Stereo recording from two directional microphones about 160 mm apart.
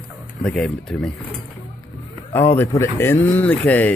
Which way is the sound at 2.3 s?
15° left (ahead or behind).